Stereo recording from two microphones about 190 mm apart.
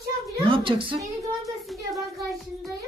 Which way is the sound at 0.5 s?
25° right (ahead or behind).